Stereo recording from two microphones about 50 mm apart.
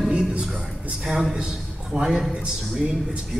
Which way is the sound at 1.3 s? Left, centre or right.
Centre.